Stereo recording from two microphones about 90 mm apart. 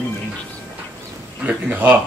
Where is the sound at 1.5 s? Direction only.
20° right (ahead or behind).